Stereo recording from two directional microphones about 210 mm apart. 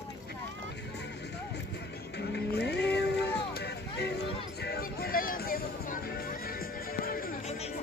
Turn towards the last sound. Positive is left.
turn(degrees=40)  # may be behind; listen again after turning